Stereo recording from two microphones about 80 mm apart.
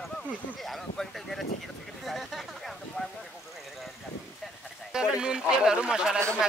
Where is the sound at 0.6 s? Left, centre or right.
Centre.